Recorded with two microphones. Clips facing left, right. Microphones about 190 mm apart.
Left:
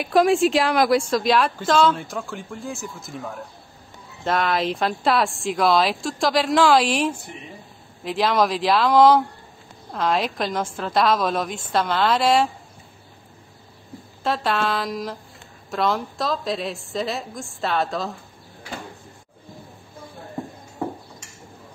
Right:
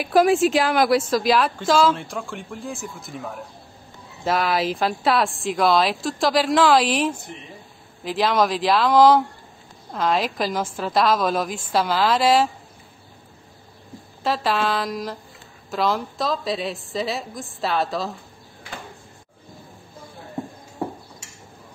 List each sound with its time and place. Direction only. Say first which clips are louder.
0.0 s a woman's voice: even; centre (ahead or behind)
14.2 s a woman's voice: right 1 dB; centre (ahead or behind)